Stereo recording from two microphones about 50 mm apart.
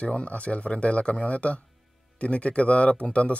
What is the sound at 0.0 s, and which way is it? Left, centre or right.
Speech, left.